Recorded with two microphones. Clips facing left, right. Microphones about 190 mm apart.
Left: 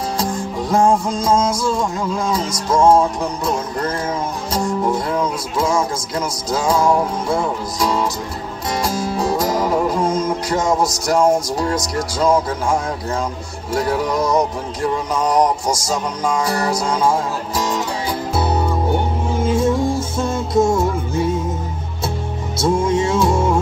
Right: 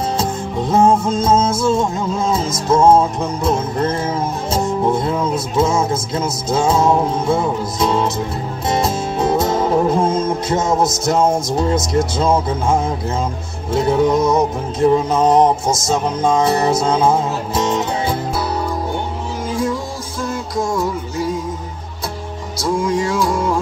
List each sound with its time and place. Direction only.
0.2 s music: 25° right (ahead or behind)
13.7 s music: 25° right (ahead or behind)
19.4 s music: 25° left (ahead or behind)
22.6 s music: 25° left (ahead or behind)